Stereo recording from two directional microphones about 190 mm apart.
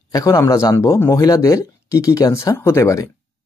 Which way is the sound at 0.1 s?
15° left (ahead or behind).